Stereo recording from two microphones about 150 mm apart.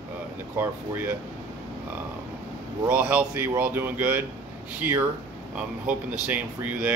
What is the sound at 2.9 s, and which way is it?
A man's voice, 10° right (ahead or behind).